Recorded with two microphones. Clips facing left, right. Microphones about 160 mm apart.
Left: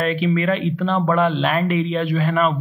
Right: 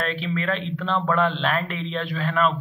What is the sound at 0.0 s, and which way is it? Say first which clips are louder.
Speech: left 7 dB; 10° left (ahead or behind).